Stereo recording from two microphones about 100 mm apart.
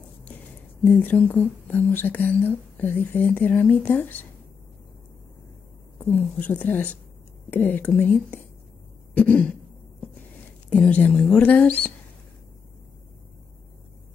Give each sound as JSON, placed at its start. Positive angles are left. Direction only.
{"t": 0.8, "sound": "speech", "side_deg": 15}
{"t": 5.9, "sound": "speech", "side_deg": 15}
{"t": 9.1, "sound": "throat clearing", "side_deg": 15}
{"t": 10.7, "sound": "speech", "side_deg": 15}